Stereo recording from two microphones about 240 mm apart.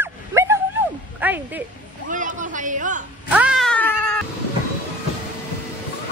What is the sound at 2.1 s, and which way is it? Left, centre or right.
Speech, right.